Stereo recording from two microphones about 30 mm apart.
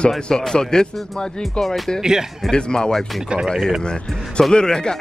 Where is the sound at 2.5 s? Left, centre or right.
Left.